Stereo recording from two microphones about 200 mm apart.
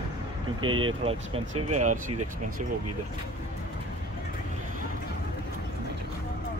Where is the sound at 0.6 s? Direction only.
25° right (ahead or behind).